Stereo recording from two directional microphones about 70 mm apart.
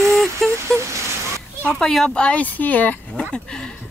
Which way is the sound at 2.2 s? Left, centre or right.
Left.